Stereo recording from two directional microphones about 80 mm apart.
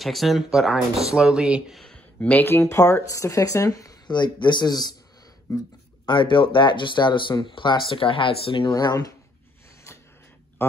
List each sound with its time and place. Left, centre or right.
0.0 s speech: centre
1.8 s a sound: centre
2.1 s speech: left
2.6 s speech: left
4.1 s speech: left
6.0 s speech: left
8.7 s speech: left
9.9 s a sound: left